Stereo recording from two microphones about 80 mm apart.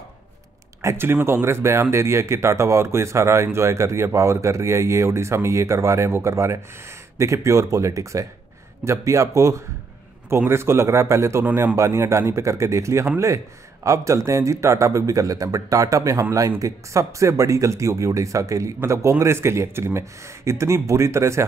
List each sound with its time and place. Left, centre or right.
0.8 s speech: right